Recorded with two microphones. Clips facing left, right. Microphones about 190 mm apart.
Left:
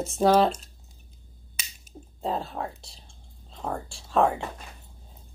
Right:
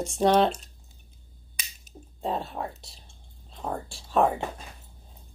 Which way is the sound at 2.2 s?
Centre (ahead or behind).